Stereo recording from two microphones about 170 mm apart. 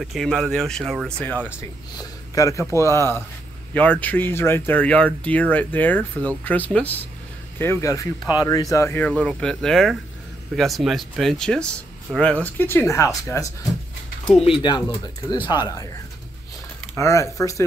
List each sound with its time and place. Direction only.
0.0 s speech: centre (ahead or behind); by 13.5 s 15° left (ahead or behind)
14.4 s speech: 30° left (ahead or behind)
16.9 s speech: 15° left (ahead or behind)